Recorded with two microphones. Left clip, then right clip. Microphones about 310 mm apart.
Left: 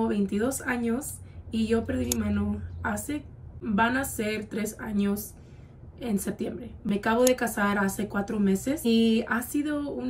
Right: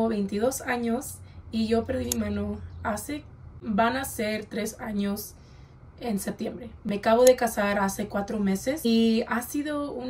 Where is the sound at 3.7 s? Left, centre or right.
Left.